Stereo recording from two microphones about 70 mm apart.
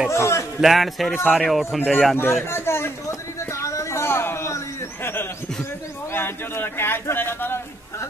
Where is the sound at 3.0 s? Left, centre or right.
Left.